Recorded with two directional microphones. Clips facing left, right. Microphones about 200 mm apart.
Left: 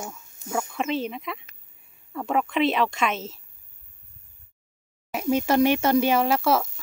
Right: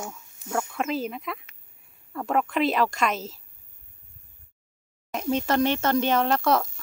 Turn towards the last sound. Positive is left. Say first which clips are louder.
# left 1 dB
turn(degrees=5)  # may be behind; listen again after turning